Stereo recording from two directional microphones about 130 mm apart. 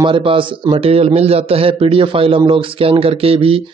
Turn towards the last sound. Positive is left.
turn(degrees=-45)  # may be behind; listen again after turning